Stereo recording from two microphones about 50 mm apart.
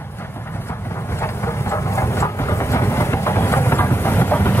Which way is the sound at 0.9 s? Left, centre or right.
Left.